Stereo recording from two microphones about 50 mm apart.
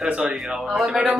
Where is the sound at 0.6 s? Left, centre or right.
Centre.